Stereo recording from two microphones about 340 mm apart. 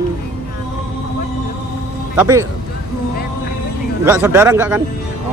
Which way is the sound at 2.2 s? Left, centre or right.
Centre.